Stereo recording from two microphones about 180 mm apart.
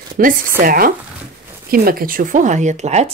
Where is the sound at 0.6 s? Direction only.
50° right (ahead or behind).